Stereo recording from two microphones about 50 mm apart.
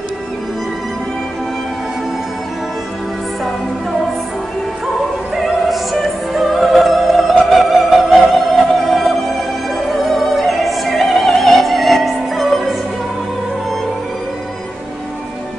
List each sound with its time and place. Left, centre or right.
5.3 s opera: centre
7.4 s music: centre
9.9 s opera: centre